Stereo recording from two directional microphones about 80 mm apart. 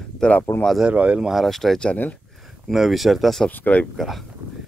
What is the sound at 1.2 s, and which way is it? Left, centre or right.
Speech, centre.